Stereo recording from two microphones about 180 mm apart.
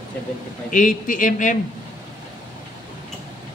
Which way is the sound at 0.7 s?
50° left (ahead or behind).